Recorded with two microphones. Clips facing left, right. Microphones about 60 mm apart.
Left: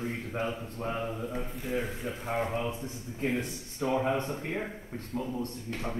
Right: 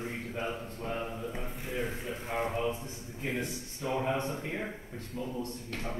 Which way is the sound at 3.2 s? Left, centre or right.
Left.